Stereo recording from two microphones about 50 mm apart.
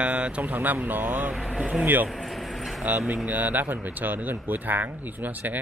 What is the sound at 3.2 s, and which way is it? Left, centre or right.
Speech, right.